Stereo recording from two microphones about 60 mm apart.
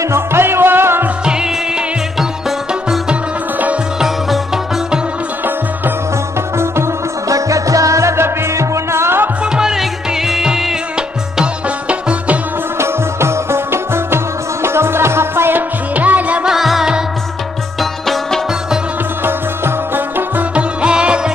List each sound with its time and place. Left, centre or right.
0.1 s music: right
1.2 s music: centre
7.2 s music: right
9.4 s music: centre
11.9 s music: right
12.7 s music: right
15.9 s music: right
16.4 s music: centre
17.7 s music: centre
19.2 s music: right
20.5 s music: centre